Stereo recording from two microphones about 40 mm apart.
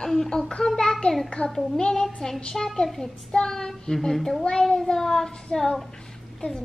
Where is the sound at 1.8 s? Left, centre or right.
Centre.